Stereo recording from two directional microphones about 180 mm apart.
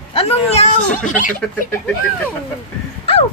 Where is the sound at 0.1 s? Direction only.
35° left (ahead or behind).